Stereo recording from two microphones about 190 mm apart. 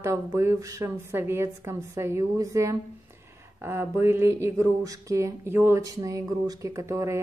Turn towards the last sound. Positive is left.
turn(degrees=-15)  # may be behind; listen again after turning